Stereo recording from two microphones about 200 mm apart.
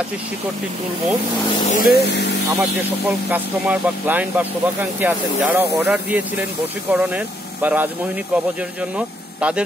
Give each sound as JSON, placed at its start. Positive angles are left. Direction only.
{"t": 1.7, "sound": "speech", "side_deg": 50}
{"t": 3.3, "sound": "speech", "side_deg": -10}
{"t": 8.9, "sound": "speech", "side_deg": -5}